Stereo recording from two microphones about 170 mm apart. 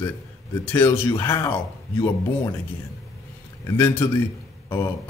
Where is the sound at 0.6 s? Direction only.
10° left (ahead or behind).